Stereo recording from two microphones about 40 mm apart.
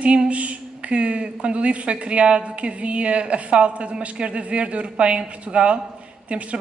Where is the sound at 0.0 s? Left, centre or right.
Right.